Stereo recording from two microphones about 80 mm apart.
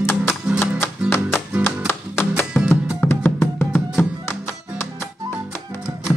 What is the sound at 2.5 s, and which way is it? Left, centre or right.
Music, centre.